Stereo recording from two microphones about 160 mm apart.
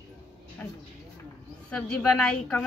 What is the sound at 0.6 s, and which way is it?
A woman's voice, 10° left (ahead or behind).